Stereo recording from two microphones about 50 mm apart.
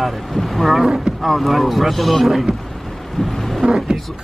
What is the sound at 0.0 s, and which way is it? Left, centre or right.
Speech, centre.